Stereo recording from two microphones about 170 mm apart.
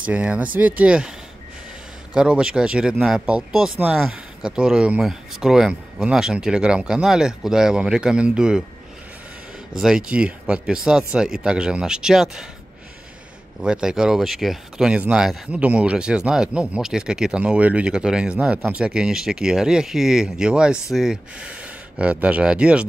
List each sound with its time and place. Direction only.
0.0 s speech: 5° right (ahead or behind)
2.1 s speech: 5° right (ahead or behind)
9.8 s speech: 5° right (ahead or behind)
13.6 s speech: 5° right (ahead or behind)